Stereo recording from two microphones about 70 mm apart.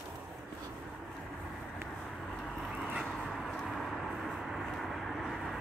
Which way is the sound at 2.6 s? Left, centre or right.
Centre.